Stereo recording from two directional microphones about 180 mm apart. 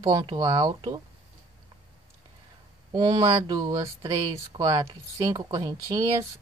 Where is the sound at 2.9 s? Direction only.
25° right (ahead or behind).